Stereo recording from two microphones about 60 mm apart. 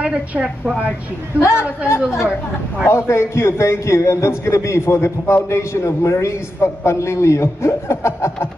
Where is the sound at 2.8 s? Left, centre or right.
Left.